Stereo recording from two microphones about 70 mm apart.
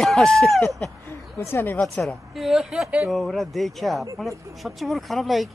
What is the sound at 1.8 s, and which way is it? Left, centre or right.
Speech, centre.